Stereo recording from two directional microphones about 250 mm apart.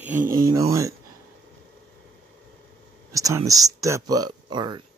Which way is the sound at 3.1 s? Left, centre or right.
Centre.